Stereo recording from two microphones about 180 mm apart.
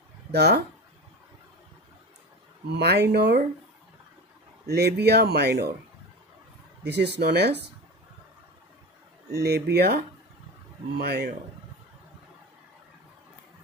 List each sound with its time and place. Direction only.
0.3 s speech: 65° right (ahead or behind)
2.7 s speech: 65° right (ahead or behind)
4.6 s speech: 65° right (ahead or behind)
6.8 s speech: 70° right (ahead or behind)
9.3 s speech: 65° right (ahead or behind)